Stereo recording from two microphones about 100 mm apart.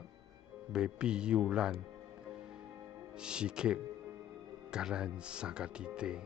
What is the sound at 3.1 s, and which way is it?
Speech, 10° right (ahead or behind).